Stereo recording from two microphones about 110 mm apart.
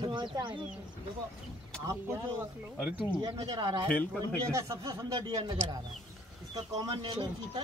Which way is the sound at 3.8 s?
10° left (ahead or behind).